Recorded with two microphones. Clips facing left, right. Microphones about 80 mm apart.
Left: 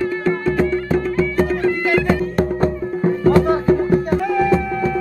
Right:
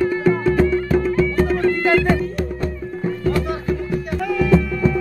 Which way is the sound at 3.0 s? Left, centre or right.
Left.